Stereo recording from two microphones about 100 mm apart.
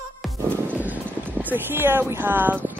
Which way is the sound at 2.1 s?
20° right (ahead or behind).